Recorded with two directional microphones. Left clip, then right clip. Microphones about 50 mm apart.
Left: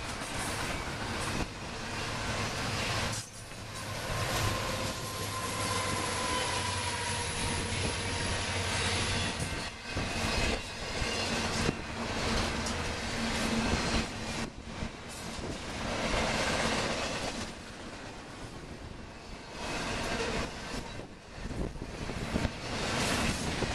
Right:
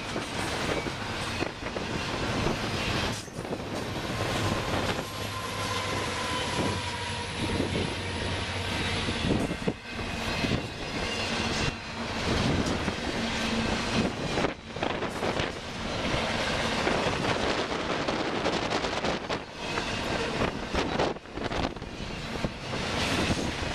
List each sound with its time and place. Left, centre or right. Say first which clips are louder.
5.6 s train: right 3 dB; right
7.4 s vehicle: right 4 dB; centre
8.6 s train: right 2 dB; centre
11.1 s train: right 2 dB; right
13.3 s train: right 1 dB; right
16.2 s train: right 1 dB; centre
22.8 s waves: right 3 dB; right